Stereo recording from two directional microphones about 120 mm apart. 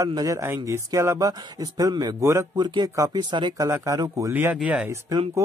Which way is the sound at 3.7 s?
25° right (ahead or behind).